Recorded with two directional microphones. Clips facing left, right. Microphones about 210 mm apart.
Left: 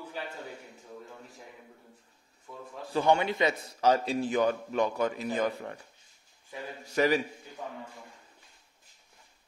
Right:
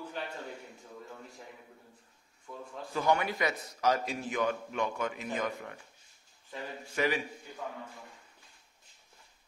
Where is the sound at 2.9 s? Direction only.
30° left (ahead or behind).